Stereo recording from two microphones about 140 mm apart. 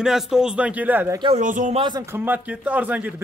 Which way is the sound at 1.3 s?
60° right (ahead or behind).